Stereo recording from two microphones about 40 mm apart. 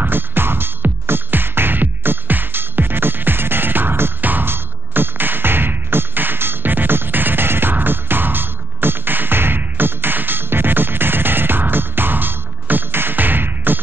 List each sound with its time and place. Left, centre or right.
0.0 s music: right
4.2 s music: right
4.5 s music: right